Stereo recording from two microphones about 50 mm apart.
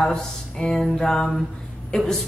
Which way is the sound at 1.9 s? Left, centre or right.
Centre.